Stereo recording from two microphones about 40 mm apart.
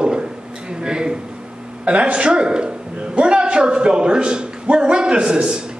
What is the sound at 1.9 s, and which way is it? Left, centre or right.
A man's voice, right.